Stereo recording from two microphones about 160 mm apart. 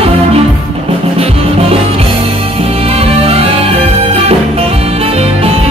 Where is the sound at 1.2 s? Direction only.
40° right (ahead or behind).